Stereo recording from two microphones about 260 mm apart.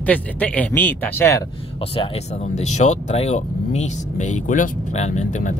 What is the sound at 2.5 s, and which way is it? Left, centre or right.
Speech, left.